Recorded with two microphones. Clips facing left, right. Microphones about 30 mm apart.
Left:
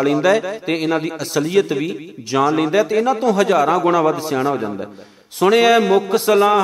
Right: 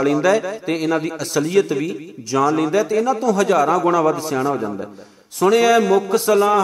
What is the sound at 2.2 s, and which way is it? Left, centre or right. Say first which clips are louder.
A man's voice: left 1 dB; left.